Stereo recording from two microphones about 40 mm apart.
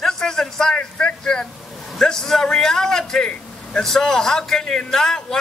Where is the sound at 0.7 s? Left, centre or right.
Left.